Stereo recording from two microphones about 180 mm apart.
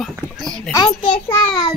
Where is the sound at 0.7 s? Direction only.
30° left (ahead or behind).